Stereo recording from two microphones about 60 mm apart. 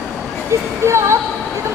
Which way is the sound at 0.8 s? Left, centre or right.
Right.